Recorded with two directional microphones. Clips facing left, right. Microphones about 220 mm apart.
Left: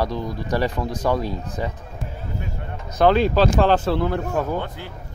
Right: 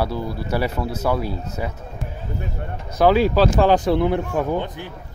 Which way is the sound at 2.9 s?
10° right (ahead or behind).